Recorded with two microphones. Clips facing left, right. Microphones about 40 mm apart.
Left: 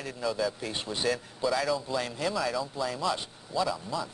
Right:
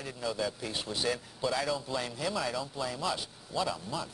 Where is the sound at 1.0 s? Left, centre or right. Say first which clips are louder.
Left 4 dB; centre.